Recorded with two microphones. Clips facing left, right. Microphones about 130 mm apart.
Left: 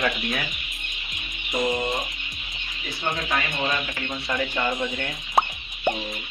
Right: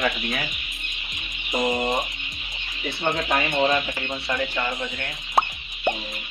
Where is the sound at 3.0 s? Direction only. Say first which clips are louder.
Right 3 dB; 50° right (ahead or behind).